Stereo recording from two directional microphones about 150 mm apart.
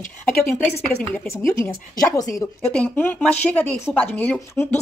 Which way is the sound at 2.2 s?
20° left (ahead or behind).